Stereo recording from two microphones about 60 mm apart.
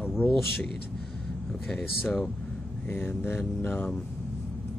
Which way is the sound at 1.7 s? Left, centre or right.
Centre.